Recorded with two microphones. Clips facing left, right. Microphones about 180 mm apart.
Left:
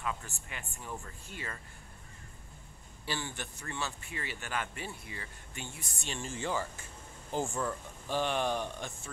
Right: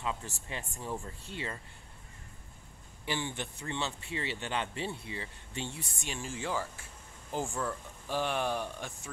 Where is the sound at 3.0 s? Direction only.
15° right (ahead or behind).